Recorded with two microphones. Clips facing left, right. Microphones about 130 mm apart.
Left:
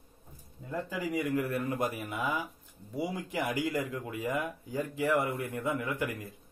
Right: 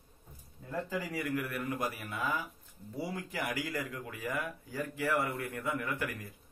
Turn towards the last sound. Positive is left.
turn(degrees=20)  # may be behind; listen again after turning